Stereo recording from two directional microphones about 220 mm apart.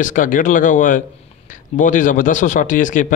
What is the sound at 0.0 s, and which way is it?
A man's voice, 35° left (ahead or behind).